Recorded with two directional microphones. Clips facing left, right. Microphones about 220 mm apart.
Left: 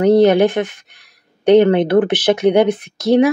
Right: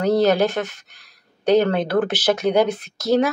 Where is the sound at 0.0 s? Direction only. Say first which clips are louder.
Left 6 dB; 15° left (ahead or behind).